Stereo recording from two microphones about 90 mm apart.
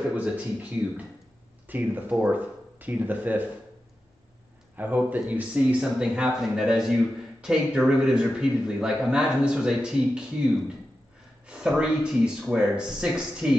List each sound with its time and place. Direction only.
0.1 s a man's voice: 15° right (ahead or behind)
4.7 s a man's voice: 20° right (ahead or behind)